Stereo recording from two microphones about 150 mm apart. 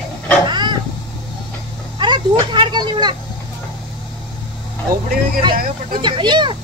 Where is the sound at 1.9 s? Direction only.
30° right (ahead or behind).